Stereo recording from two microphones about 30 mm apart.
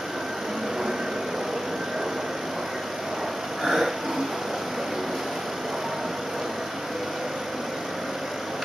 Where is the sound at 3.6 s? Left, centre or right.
Centre.